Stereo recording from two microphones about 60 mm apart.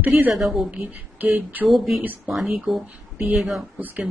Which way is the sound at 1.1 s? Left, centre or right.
Right.